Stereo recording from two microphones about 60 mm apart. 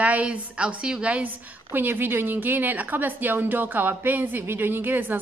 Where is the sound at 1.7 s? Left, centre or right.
Right.